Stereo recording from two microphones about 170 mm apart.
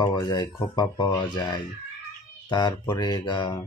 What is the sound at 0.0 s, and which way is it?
Speech, 25° left (ahead or behind).